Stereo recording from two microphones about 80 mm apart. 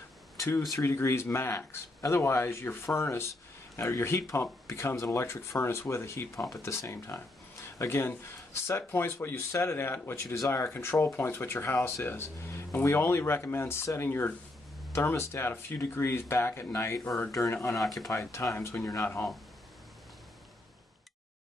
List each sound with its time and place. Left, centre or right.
0.6 s speech: left
10.2 s speech: left
17.7 s speech: centre
18.1 s speech: left